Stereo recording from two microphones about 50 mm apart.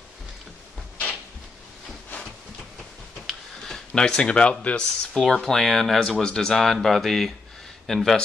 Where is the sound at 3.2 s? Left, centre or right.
Centre.